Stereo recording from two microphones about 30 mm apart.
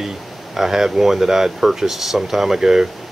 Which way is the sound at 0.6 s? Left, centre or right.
Centre.